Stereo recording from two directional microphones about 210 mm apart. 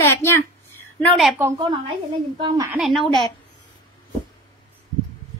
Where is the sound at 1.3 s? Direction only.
10° right (ahead or behind).